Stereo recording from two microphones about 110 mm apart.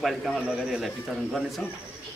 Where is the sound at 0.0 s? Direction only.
Centre (ahead or behind).